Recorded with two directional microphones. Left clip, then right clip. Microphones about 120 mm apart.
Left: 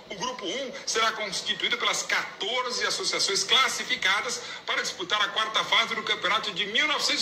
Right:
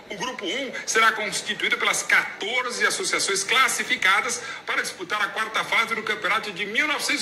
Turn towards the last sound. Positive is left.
turn(degrees=-35)  # may be behind; listen again after turning